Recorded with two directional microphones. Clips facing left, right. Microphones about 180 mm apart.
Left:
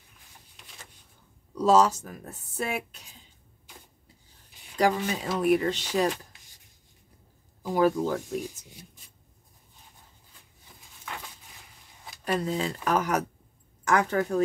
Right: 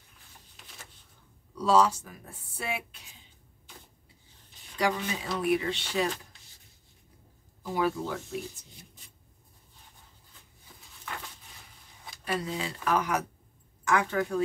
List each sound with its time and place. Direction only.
1.6 s speech: 40° left (ahead or behind)
4.7 s speech: 45° left (ahead or behind)
7.7 s speech: 40° left (ahead or behind)
12.3 s a woman's voice: 45° left (ahead or behind)